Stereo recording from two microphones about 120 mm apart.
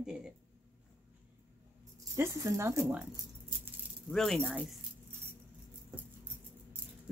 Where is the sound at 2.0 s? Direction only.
25° right (ahead or behind).